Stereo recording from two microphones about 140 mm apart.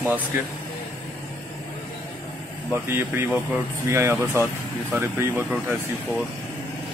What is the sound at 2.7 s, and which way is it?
Speech, 15° right (ahead or behind).